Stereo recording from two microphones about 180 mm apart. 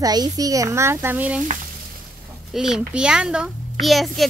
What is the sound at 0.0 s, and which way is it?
Speech, 20° right (ahead or behind).